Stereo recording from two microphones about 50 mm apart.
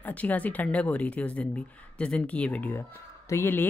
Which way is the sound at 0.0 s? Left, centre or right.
Left.